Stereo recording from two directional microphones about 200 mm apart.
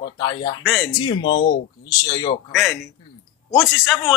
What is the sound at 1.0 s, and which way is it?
Speech, 25° left (ahead or behind).